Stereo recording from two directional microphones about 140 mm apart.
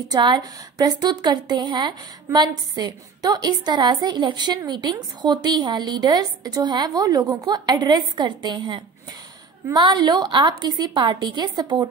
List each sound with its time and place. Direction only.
0.1 s a woman's voice: 30° right (ahead or behind)